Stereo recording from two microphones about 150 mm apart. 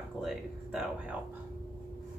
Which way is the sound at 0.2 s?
5° right (ahead or behind).